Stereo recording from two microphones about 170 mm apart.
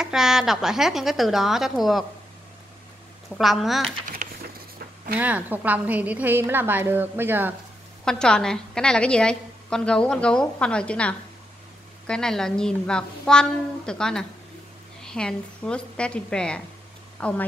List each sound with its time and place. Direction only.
0.0 s a woman's voice: centre (ahead or behind)
3.3 s a woman's voice: centre (ahead or behind)
4.2 s a sound: 45° right (ahead or behind)
5.2 s a woman's voice: 10° right (ahead or behind)
8.0 s a woman's voice: 5° left (ahead or behind)